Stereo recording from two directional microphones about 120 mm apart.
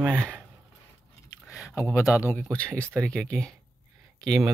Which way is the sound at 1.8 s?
25° left (ahead or behind).